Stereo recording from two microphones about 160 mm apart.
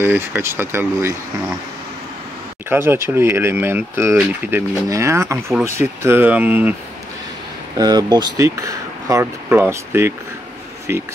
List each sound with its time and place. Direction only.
0.0 s speech: 15° right (ahead or behind)
2.7 s speech: 15° right (ahead or behind)
7.7 s speech: 25° right (ahead or behind)